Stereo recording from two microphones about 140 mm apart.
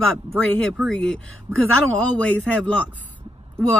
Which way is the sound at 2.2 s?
10° left (ahead or behind).